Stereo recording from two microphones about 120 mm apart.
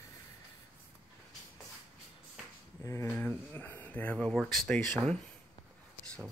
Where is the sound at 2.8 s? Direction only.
25° left (ahead or behind); by 4.9 s 5° left (ahead or behind).